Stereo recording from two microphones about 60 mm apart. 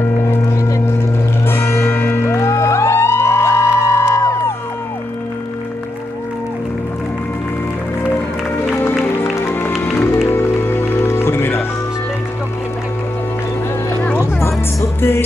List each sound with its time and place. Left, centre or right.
0.0 s music: left
9.0 s music: left
14.0 s music: left